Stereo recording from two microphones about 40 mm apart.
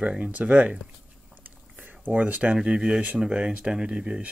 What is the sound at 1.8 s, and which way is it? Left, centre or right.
Speech, right.